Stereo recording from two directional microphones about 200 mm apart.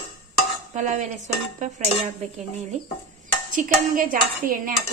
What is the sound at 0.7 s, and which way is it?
Stir, 35° right (ahead or behind).